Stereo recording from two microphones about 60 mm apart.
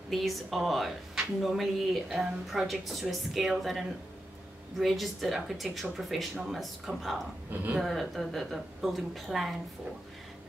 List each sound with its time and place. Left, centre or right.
0.1 s a woman's voice: centre